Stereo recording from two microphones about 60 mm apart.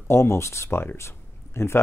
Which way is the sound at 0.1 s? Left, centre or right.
Left.